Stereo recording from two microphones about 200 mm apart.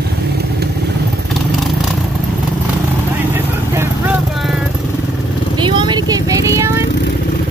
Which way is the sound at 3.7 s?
10° right (ahead or behind).